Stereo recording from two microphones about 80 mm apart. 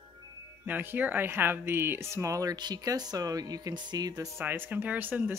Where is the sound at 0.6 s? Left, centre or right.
Right.